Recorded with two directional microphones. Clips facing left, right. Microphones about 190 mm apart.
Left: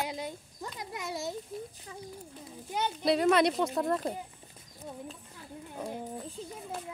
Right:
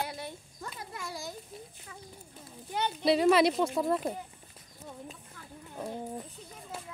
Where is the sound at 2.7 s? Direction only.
10° left (ahead or behind).